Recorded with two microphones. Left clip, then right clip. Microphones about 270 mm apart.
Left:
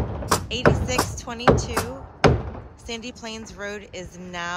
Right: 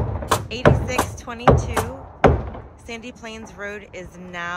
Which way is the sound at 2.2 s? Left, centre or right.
Right.